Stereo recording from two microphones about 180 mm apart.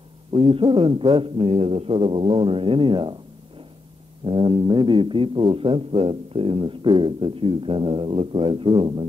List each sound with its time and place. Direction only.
0.3 s speech: 30° right (ahead or behind)
4.3 s speech: 25° right (ahead or behind)